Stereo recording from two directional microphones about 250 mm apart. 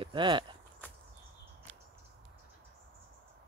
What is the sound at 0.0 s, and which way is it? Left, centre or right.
Walk, centre.